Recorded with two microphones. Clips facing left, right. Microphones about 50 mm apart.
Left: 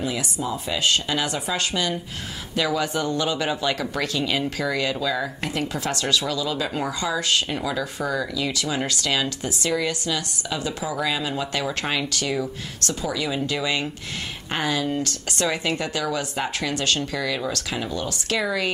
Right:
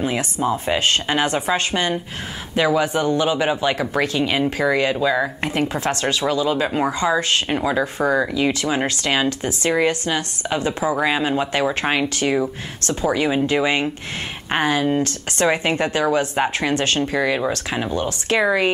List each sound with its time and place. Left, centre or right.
0.0 s speech: right